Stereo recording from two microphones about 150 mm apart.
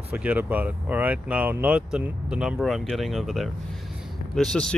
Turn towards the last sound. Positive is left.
turn(degrees=5)  # may be behind; listen again after turning